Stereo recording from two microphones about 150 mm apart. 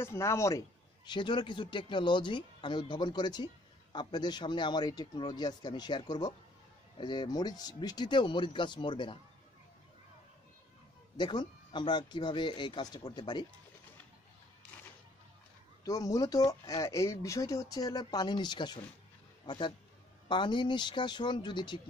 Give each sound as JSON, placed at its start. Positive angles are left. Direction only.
{"t": 0.0, "sound": "a man's voice", "side_deg": 20}
{"t": 11.1, "sound": "a man's voice", "side_deg": 30}
{"t": 15.8, "sound": "a man's voice", "side_deg": 25}